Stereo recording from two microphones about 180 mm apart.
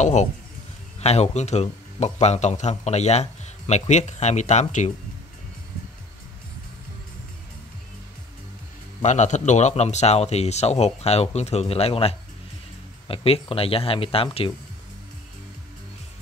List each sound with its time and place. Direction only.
0.0 s speech: 40° left (ahead or behind)
9.0 s speech: 40° left (ahead or behind)